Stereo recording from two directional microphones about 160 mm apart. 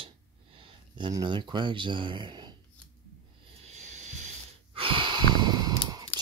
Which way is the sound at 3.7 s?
45° right (ahead or behind).